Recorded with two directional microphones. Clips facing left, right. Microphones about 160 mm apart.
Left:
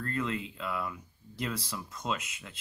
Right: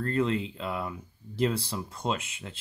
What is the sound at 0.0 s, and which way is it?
Speech, 30° right (ahead or behind).